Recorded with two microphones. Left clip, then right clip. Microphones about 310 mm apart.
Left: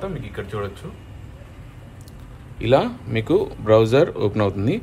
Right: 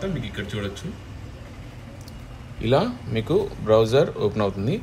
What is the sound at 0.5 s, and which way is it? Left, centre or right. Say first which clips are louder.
Speech: left 5 dB; centre.